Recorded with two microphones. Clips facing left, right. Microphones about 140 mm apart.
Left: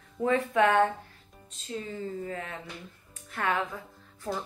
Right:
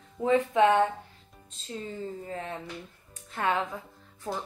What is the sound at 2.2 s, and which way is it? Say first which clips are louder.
A woman's voice: right 1 dB; 25° right (ahead or behind).